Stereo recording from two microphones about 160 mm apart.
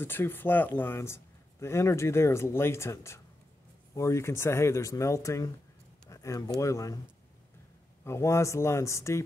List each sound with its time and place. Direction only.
0.0 s speech: 15° left (ahead or behind)
6.0 s a sound: 20° left (ahead or behind)
6.6 s speech: 20° left (ahead or behind)
8.0 s speech: 15° left (ahead or behind)